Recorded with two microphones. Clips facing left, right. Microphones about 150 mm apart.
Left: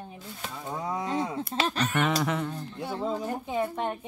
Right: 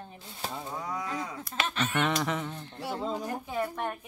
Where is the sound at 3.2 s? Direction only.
15° left (ahead or behind).